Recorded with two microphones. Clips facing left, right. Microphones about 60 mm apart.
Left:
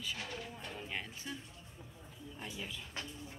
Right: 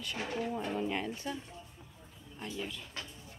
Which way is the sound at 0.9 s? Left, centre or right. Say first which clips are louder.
Right 7 dB; centre.